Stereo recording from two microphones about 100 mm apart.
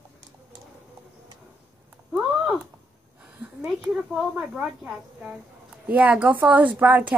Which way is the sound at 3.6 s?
5° right (ahead or behind).